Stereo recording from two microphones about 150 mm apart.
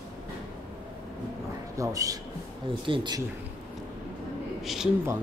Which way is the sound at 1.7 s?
20° right (ahead or behind).